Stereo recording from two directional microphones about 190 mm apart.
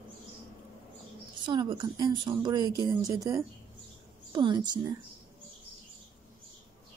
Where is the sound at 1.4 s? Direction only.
25° right (ahead or behind).